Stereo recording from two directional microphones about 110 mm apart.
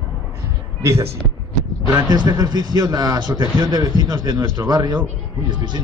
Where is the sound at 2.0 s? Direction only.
40° right (ahead or behind).